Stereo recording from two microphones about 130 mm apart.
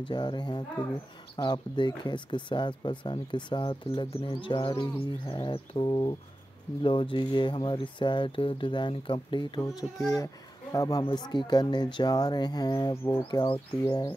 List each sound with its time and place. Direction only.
0.0 s speech: 35° left (ahead or behind)
9.6 s speech: 25° left (ahead or behind)
12.9 s speech: 20° left (ahead or behind)
13.3 s speech: 35° left (ahead or behind)